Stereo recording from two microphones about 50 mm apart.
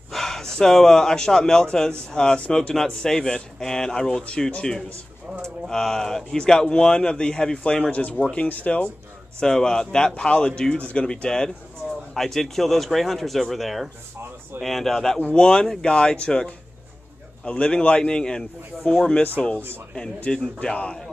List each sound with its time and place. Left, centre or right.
0.1 s speech: centre; by 8.8 s left
9.4 s speech: centre
20.3 s speech: left